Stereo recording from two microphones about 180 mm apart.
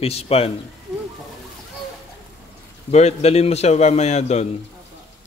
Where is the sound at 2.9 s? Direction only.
35° left (ahead or behind).